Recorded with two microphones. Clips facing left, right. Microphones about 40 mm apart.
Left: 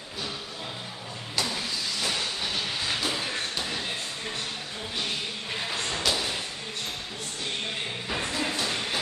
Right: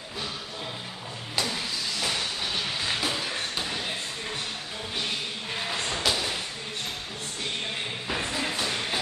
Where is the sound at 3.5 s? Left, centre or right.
Centre.